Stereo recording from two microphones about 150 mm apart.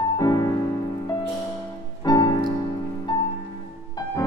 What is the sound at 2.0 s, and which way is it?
Music, 25° left (ahead or behind).